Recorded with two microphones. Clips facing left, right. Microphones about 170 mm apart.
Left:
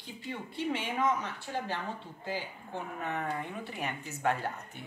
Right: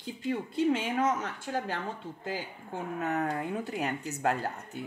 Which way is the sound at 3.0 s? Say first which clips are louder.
Right 5 dB; 40° right (ahead or behind).